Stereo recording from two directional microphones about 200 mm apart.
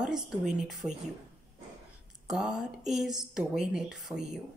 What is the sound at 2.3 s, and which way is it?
A woman's voice, centre (ahead or behind).